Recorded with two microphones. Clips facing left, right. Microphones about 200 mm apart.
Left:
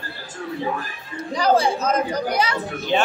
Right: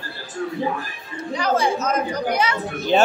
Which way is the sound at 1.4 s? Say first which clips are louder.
Left 2 dB; 30° left (ahead or behind).